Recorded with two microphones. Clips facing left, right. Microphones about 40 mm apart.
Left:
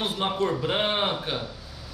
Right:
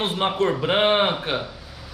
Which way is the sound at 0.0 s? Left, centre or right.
Right.